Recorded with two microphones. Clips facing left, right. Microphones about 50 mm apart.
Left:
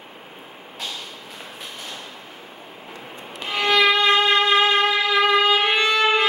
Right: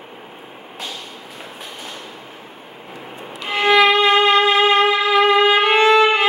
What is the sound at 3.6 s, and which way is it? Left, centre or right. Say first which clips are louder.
Violin: right 4 dB; right.